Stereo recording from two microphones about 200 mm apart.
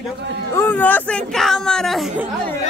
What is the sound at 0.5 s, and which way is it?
Speech, 10° left (ahead or behind).